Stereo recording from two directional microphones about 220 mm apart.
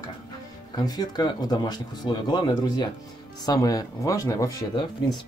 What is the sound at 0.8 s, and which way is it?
Speech, 20° left (ahead or behind).